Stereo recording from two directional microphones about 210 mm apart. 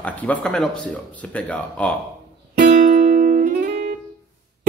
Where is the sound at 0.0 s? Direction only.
5° left (ahead or behind).